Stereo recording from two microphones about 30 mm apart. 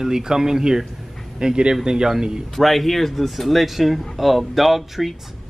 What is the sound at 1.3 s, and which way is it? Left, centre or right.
Speech, right.